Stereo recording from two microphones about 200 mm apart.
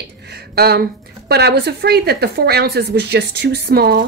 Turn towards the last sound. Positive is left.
turn(degrees=-50)  # may be behind; listen again after turning